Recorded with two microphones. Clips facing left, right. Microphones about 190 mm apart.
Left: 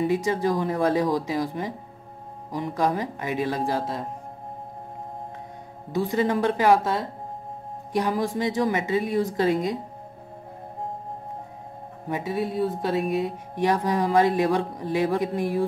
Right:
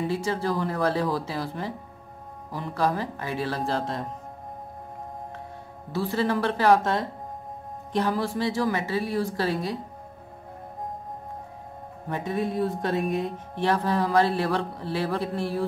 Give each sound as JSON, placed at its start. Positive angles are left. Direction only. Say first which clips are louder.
{"t": 0.0, "sound": "speech", "louder": "left 4 dB", "side_deg": 15}
{"t": 5.9, "sound": "speech", "louder": "left 2 dB", "side_deg": 15}
{"t": 7.9, "sound": "a woman's voice", "louder": "left 1 dB", "side_deg": 15}
{"t": 12.1, "sound": "speech", "louder": "left 1 dB", "side_deg": 5}
{"t": 13.6, "sound": "speech", "louder": "left 1 dB", "side_deg": 15}